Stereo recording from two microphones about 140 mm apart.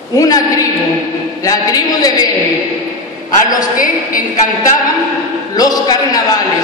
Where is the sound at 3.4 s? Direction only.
25° left (ahead or behind).